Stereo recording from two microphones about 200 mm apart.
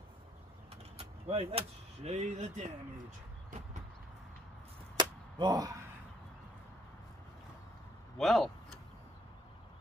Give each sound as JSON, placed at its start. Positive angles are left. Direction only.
{"t": 0.9, "sound": "vehicle", "side_deg": -30}
{"t": 2.0, "sound": "speech", "side_deg": -35}
{"t": 4.9, "sound": "chop", "side_deg": -20}
{"t": 8.2, "sound": "speech", "side_deg": 0}